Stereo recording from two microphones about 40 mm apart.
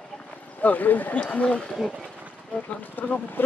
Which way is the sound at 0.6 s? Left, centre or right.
Left.